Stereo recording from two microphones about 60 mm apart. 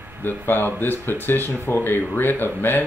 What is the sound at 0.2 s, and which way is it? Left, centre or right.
Speech, left.